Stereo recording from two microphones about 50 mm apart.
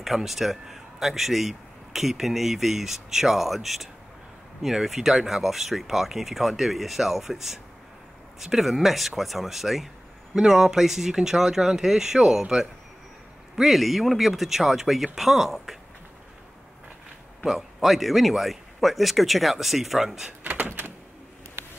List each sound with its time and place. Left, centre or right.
0.0 s speech: centre
17.4 s speech: centre
20.4 s door: right